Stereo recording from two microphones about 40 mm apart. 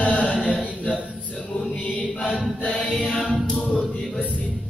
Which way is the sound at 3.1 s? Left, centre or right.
Centre.